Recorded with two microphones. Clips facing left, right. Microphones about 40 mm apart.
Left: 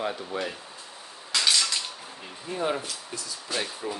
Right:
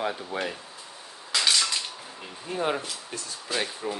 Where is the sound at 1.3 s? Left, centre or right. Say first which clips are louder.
Even; centre.